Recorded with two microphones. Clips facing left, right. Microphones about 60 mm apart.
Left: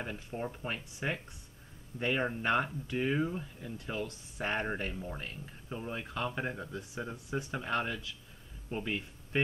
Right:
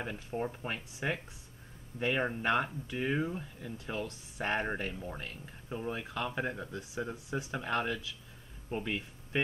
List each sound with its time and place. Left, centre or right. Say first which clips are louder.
0.0 s speech: right 2 dB; centre